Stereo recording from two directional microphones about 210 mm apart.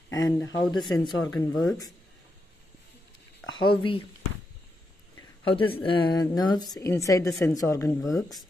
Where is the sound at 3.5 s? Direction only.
25° left (ahead or behind).